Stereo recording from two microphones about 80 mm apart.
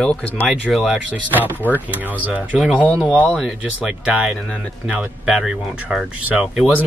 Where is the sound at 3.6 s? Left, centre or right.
Centre.